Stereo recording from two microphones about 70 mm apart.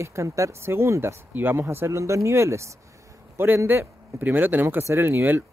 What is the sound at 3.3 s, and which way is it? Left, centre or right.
A man's voice, right.